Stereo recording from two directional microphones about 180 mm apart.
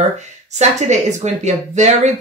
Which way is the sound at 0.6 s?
40° right (ahead or behind).